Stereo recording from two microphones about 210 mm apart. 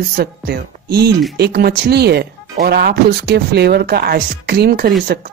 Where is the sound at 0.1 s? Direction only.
50° right (ahead or behind).